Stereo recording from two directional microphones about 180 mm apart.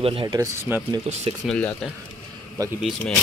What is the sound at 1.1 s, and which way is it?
Speech, 35° right (ahead or behind).